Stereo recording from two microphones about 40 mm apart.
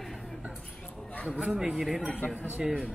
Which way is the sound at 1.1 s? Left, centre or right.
Left.